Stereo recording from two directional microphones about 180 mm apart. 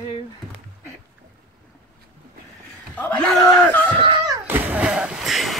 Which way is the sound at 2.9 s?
10° left (ahead or behind).